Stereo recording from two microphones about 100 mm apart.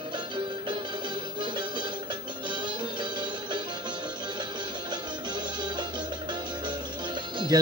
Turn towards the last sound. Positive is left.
turn(degrees=-50)  # may be behind; listen again after turning